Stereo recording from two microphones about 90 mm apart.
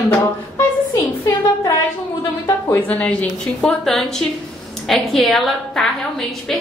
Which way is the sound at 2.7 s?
20° left (ahead or behind).